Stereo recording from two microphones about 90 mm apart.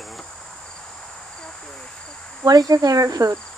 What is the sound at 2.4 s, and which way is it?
Cricket, 45° right (ahead or behind).